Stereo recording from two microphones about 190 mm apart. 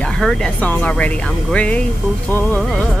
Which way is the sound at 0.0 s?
5° left (ahead or behind).